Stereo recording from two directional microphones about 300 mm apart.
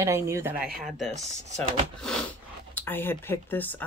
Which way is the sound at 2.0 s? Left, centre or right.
Centre.